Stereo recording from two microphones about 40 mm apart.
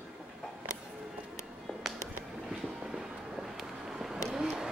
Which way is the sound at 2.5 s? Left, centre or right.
Centre.